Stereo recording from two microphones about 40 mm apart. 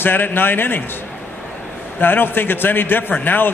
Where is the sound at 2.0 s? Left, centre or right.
Left.